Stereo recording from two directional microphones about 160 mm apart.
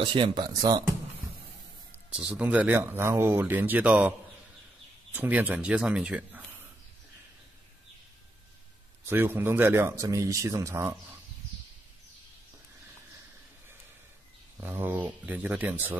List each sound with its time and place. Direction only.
0.0 s speech: 30° right (ahead or behind)
2.1 s speech: 5° right (ahead or behind)
5.1 s speech: 10° right (ahead or behind)
9.0 s speech: 10° right (ahead or behind)
14.6 s speech: 15° right (ahead or behind)